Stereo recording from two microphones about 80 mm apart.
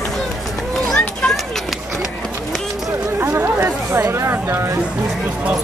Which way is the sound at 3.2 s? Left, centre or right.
Right.